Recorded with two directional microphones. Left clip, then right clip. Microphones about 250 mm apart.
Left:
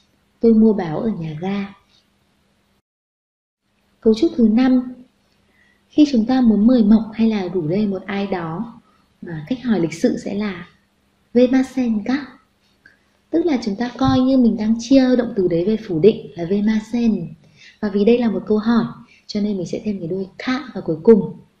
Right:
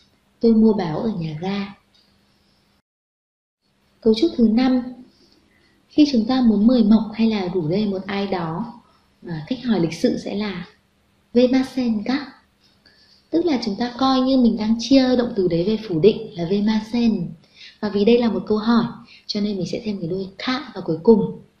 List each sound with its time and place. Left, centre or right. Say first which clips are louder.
0.4 s a woman's voice: left 2 dB; left
4.0 s a woman's voice: left 2 dB; left
5.9 s a woman's voice: left 2 dB; left
12.9 s a sound: left 5 dB; left
13.3 s a woman's voice: left 2 dB; left